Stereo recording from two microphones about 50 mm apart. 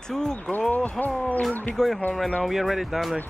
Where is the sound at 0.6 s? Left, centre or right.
Left.